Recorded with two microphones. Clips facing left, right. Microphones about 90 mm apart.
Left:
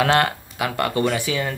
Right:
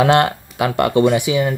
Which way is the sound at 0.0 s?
25° right (ahead or behind).